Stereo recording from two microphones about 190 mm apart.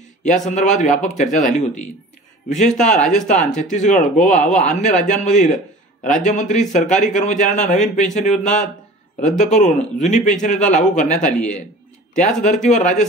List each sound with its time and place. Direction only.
0.2 s a man's voice: 40° left (ahead or behind)
12.4 s a man's voice: 40° left (ahead or behind)